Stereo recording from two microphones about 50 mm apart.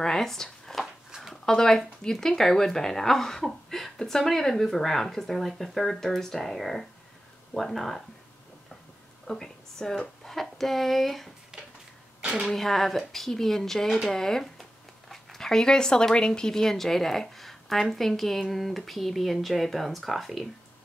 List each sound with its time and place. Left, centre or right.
0.0 s speech: centre
9.3 s speech: centre
11.5 s a sound: centre
12.5 s speech: centre